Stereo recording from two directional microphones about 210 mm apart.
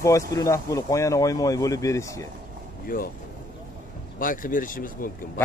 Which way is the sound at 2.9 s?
40° left (ahead or behind).